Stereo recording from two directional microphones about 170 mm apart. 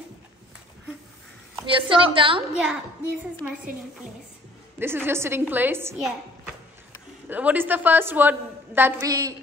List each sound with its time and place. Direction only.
1.7 s a woman's voice: 30° right (ahead or behind)
2.6 s a child's voice: 5° right (ahead or behind)
4.7 s a woman's voice: 15° right (ahead or behind)
5.9 s a woman's voice: centre (ahead or behind); by 9.3 s 20° right (ahead or behind)